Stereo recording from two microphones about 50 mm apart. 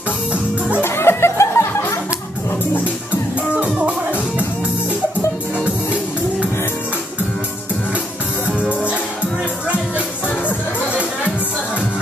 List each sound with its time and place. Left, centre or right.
0.8 s music: left
3.5 s music: right
8.5 s music: left